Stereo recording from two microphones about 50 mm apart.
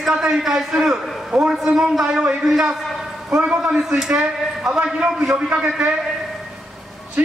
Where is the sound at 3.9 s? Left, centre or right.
Centre.